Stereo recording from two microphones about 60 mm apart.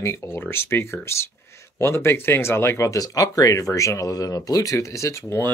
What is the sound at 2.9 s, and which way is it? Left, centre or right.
Speech, left.